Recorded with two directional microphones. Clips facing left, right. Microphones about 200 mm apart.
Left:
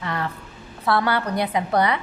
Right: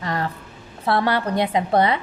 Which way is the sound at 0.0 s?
35° right (ahead or behind).